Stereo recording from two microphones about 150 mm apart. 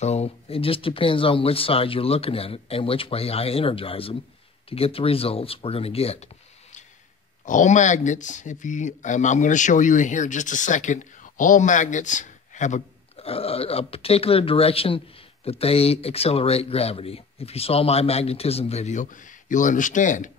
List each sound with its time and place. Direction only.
0.0 s speech: 45° left (ahead or behind)